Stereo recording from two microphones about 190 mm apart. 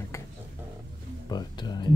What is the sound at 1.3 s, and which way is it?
Speech, 20° left (ahead or behind).